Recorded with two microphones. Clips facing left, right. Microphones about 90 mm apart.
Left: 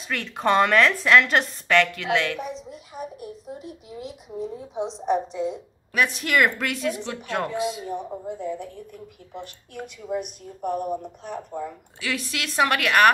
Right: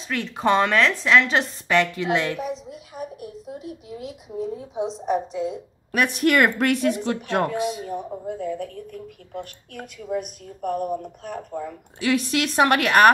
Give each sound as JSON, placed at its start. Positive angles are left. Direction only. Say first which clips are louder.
{"t": 0.1, "sound": "a woman's voice", "louder": "right 1 dB", "side_deg": 0}
{"t": 1.7, "sound": "a woman's voice", "louder": "even", "side_deg": -20}
{"t": 2.0, "sound": "a woman's voice", "louder": "right 1 dB", "side_deg": -30}
{"t": 2.3, "sound": "a sound", "louder": "right 3 dB", "side_deg": 0}
{"t": 3.2, "sound": "a sound", "louder": "right 1 dB", "side_deg": 35}
{"t": 4.4, "sound": "a woman's voice", "louder": "right 2 dB", "side_deg": -5}
{"t": 5.9, "sound": "speech", "louder": "right 3 dB", "side_deg": -55}
{"t": 8.3, "sound": "a woman's voice", "louder": "right 3 dB", "side_deg": 25}
{"t": 9.8, "sound": "a woman's voice", "louder": "right 1 dB", "side_deg": 0}
{"t": 12.0, "sound": "a woman's voice", "louder": "right 8 dB", "side_deg": -35}